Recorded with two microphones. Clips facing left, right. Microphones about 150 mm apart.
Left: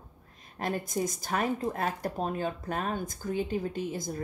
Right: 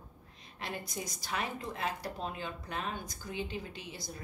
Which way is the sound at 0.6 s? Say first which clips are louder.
Left 9 dB; 45° left (ahead or behind).